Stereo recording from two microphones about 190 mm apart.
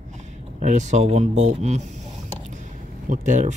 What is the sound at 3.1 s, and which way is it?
Speech, 40° right (ahead or behind).